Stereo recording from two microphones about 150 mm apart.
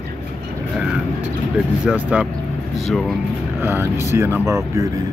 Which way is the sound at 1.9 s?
10° right (ahead or behind).